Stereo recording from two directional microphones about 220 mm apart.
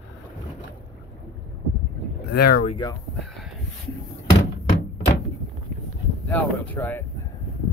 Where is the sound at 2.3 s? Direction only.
45° left (ahead or behind).